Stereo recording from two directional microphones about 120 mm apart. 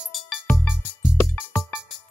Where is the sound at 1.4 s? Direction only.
15° left (ahead or behind).